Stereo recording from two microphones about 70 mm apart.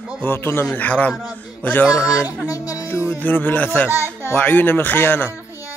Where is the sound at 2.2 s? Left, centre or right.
Left.